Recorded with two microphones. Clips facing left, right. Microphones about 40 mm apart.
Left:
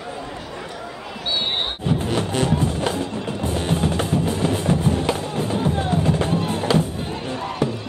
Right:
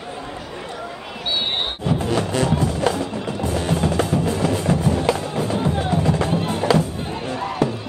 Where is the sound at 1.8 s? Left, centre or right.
Left.